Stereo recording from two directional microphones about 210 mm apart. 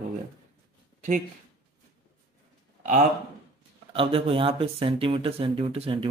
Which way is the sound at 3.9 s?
25° right (ahead or behind).